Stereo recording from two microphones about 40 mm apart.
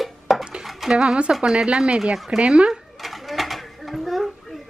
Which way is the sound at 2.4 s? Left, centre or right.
Right.